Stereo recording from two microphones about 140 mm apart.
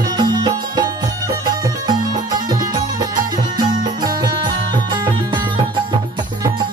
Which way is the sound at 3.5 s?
30° right (ahead or behind).